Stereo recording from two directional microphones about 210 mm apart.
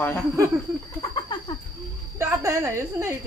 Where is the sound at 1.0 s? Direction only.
20° left (ahead or behind).